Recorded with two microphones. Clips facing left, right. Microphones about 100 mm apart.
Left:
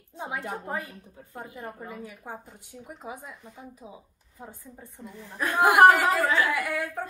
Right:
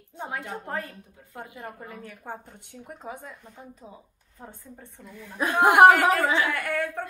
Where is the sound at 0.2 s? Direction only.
10° left (ahead or behind).